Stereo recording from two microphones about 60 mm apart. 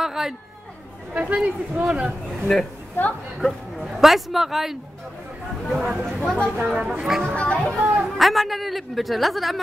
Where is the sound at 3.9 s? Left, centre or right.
Centre.